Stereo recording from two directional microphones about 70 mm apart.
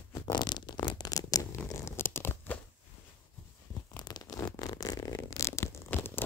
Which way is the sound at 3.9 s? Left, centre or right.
Left.